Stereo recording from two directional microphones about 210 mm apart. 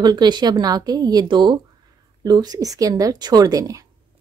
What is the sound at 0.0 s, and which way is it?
A woman's voice, 20° right (ahead or behind).